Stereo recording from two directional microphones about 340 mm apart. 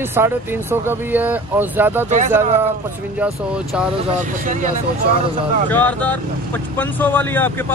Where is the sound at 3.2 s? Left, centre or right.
Centre.